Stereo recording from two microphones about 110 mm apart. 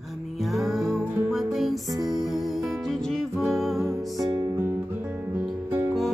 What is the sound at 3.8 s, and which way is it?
Music, 30° right (ahead or behind).